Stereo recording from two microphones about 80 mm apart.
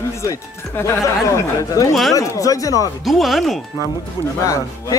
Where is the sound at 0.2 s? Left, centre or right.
Left.